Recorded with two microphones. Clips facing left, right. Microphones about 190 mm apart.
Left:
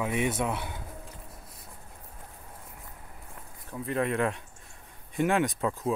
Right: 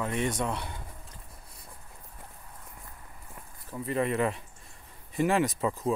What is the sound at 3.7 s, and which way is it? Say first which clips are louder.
Speech: even; centre (ahead or behind).